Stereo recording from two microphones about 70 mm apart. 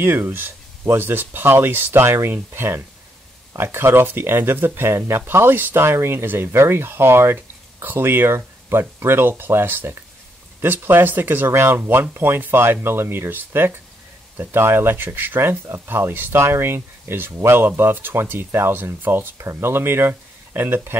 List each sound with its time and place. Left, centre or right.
0.0 s speech: right